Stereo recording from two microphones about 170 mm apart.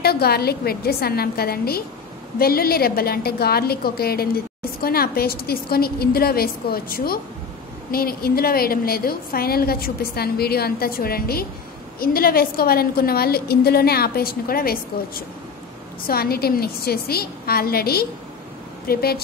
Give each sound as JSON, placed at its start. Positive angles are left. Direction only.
{"t": 0.0, "sound": "a woman's voice", "side_deg": 65}